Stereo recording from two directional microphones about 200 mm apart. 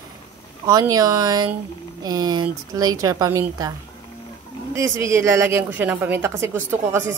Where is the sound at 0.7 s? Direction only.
15° right (ahead or behind).